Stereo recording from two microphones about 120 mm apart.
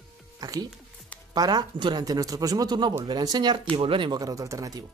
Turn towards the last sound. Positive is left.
turn(degrees=-30)  # may be behind; listen again after turning